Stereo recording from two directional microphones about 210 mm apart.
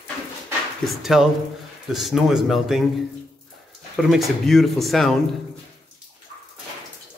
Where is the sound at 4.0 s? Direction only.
Centre (ahead or behind).